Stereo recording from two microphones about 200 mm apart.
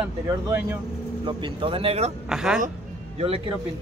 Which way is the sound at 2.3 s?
5° right (ahead or behind).